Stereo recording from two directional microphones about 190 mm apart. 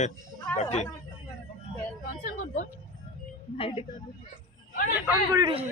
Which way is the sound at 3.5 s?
30° left (ahead or behind).